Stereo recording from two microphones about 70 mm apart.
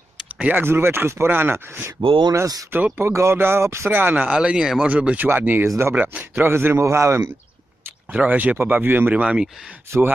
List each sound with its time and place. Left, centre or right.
0.3 s speech: right
0.7 s speech: right
3.1 s speech: right
3.9 s speech: right; by 4.8 s centre
4.8 s speech: right
8.1 s speech: right
9.2 s speech: centre
9.8 s speech: right